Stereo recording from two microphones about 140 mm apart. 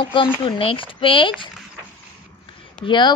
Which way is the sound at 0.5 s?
40° left (ahead or behind).